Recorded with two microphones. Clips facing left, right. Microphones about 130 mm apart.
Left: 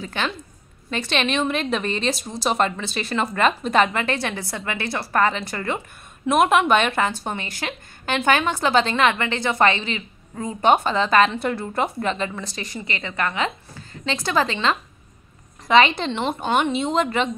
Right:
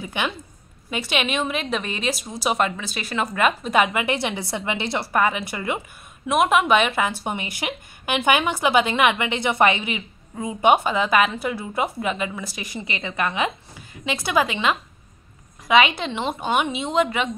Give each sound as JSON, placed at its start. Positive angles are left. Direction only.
{"t": 0.0, "sound": "a woman's voice", "side_deg": -15}